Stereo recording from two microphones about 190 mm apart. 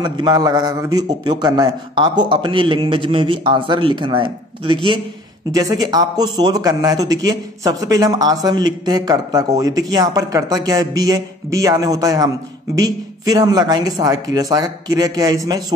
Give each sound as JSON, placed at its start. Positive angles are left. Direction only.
{"t": 0.0, "sound": "a man's voice", "side_deg": -20}